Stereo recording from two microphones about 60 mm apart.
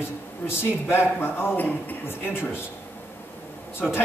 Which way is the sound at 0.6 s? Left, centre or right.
Left.